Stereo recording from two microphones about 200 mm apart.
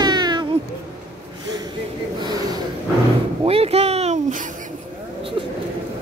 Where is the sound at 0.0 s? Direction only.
20° right (ahead or behind).